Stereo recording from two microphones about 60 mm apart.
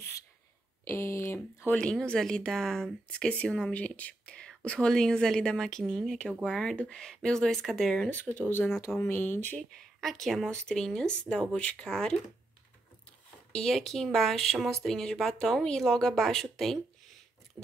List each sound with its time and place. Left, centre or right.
0.8 s a sound: left
1.7 s a woman's voice: centre
3.1 s a woman's voice: centre
3.7 s a woman's voice: left; by 8.1 s centre
8.1 s speech: left
9.6 s a woman's voice: centre
13.5 s a woman's voice: centre